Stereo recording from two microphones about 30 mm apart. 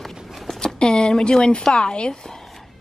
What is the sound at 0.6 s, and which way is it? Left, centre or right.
A woman's voice, left.